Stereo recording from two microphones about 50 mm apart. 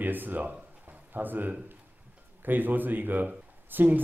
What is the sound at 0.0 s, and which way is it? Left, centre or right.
A man's voice, right.